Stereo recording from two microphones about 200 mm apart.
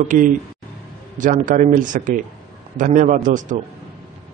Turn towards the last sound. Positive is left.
turn(degrees=-40)  # may be behind; listen again after turning